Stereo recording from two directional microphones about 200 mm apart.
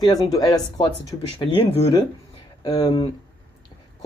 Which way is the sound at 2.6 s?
20° left (ahead or behind).